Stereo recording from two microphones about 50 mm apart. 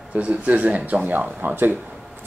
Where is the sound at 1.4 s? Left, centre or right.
Right.